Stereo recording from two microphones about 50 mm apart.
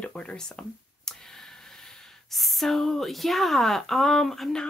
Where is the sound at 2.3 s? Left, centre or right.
Centre.